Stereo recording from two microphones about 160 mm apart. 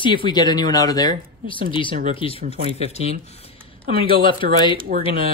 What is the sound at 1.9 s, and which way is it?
Speech, 60° right (ahead or behind).